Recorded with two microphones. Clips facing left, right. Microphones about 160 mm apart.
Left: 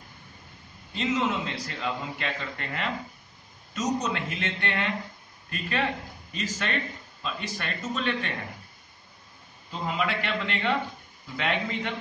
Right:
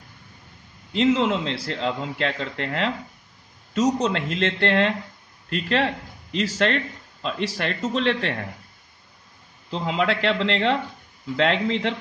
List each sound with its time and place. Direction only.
0.9 s speech: 75° right (ahead or behind)
9.7 s a man's voice: 85° right